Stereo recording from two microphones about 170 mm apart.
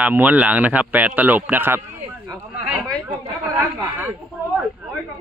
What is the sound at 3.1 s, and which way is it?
Chatter, 10° right (ahead or behind).